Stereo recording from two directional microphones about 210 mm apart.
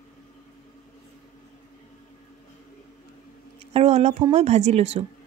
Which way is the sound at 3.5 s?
30° right (ahead or behind).